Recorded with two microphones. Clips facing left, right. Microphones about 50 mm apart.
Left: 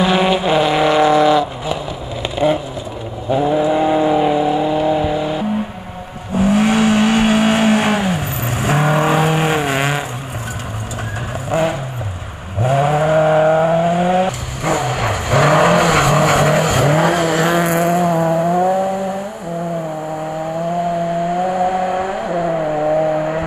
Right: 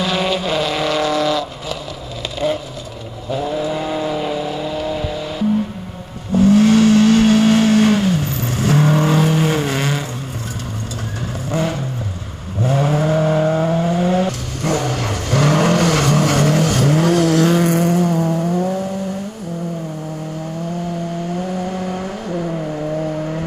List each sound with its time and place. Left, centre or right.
0.0 s vehicle: left
11.5 s vehicle: left
12.6 s a sound: centre
21.3 s vehicle: centre; by 23.4 s left